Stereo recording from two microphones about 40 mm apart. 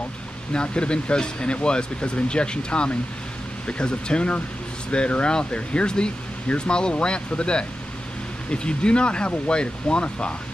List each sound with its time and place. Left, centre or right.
0.5 s speech: left